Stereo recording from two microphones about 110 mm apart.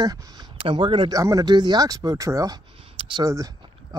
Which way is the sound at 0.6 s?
50° right (ahead or behind).